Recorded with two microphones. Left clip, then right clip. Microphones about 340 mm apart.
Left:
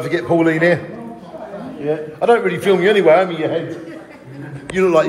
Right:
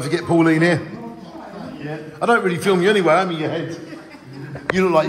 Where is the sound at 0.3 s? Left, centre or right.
Centre.